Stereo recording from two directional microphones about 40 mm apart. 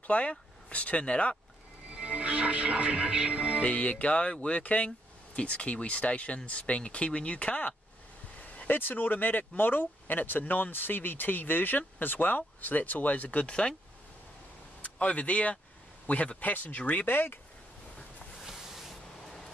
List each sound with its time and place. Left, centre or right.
0.0 s speech: left
1.9 s speech: right
3.6 s speech: left
8.6 s speech: left
14.8 s speech: left
17.0 s speech: left
18.4 s a sound: centre
19.2 s a sound: centre